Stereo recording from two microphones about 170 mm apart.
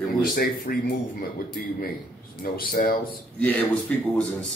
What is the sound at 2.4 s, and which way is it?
Speech, 60° left (ahead or behind).